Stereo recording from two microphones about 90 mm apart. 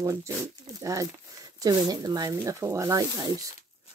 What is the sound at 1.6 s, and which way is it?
Speech, 45° right (ahead or behind).